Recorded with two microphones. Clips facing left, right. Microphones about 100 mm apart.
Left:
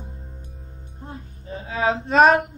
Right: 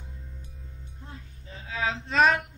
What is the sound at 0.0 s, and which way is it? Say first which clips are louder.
Music: left 6 dB; 40° left (ahead or behind).